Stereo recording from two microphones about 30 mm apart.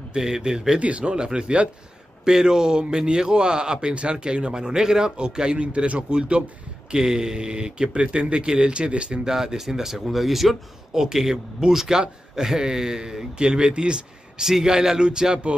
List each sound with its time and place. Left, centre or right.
0.1 s speech: right
0.7 s speech: right
1.1 s speech: right
2.2 s speech: right
9.3 s speech: centre
11.0 s speech: centre
14.4 s speech: centre